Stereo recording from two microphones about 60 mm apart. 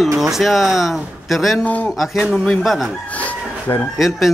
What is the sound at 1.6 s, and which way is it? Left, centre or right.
Speech, left.